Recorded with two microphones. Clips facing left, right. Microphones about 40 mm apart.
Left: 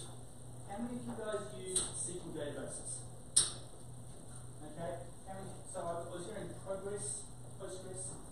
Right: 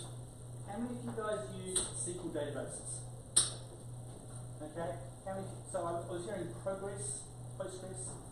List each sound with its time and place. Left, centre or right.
0.7 s a woman's voice: centre
3.4 s a sound: centre
4.8 s speech: centre
6.6 s speech: centre